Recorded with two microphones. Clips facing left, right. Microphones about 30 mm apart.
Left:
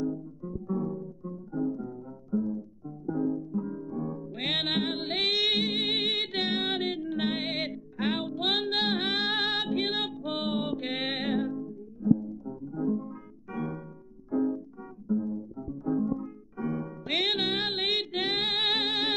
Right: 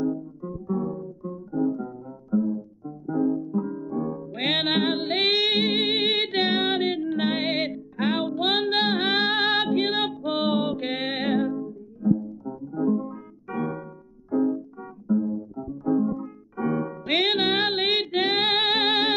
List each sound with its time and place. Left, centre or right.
0.1 s guitar: right
0.7 s guitar: centre
1.5 s music: centre
6.1 s music: centre